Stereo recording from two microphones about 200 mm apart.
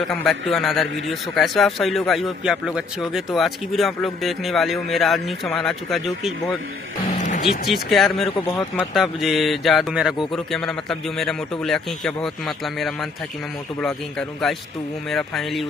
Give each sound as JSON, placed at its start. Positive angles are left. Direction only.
{"t": 0.1, "sound": "a man's voice", "side_deg": 5}
{"t": 7.2, "sound": "music", "side_deg": 40}
{"t": 7.7, "sound": "a man's voice", "side_deg": 0}
{"t": 8.5, "sound": "speech", "side_deg": 10}
{"t": 8.9, "sound": "a man's voice", "side_deg": 0}